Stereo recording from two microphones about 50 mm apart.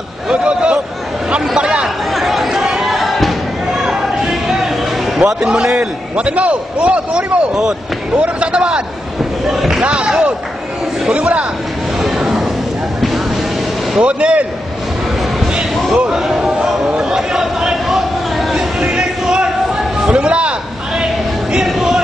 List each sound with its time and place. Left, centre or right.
0.3 s a sound: centre
1.6 s chatter: right
2.1 s chatter: centre
3.7 s music: centre
5.4 s a man's voice: centre
9.5 s speech: centre
9.8 s a man's voice: centre
12.2 s a sound: centre
13.9 s a man's voice: right
15.9 s speech: centre
17.0 s a sound: centre
18.8 s a sound: centre
21.6 s music: centre